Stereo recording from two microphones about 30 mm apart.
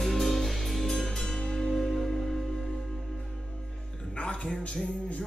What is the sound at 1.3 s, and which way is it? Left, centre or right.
Music, left.